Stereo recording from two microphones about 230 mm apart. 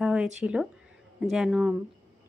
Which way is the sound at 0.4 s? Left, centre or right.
Centre.